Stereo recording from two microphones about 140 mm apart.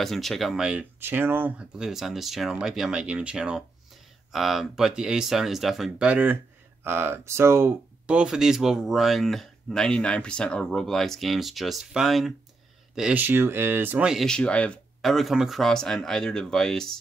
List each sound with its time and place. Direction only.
0.0 s speech: centre (ahead or behind); by 8.2 s 15° right (ahead or behind)
8.2 s speech: 5° right (ahead or behind)